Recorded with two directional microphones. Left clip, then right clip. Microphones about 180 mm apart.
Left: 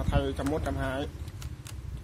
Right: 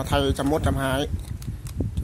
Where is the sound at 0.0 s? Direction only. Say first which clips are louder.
Right 8 dB; 55° right (ahead or behind).